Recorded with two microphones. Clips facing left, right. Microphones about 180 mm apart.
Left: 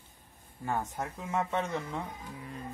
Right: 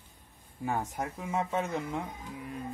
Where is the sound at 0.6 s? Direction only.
10° right (ahead or behind).